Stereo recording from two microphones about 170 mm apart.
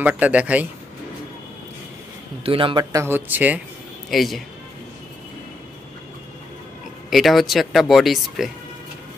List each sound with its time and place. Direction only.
0.0 s speech: 10° right (ahead or behind)
2.4 s speech: 30° right (ahead or behind); by 4.4 s centre (ahead or behind)
7.1 s speech: centre (ahead or behind)